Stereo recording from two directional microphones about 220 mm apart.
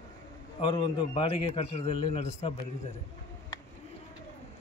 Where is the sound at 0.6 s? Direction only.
20° left (ahead or behind).